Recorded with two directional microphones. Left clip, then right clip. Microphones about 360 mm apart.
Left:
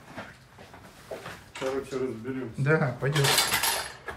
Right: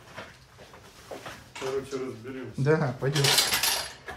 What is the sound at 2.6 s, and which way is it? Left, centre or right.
Speech, centre.